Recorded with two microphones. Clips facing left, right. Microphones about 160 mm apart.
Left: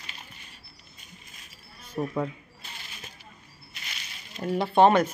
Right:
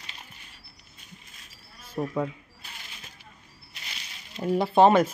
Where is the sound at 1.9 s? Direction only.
Centre (ahead or behind).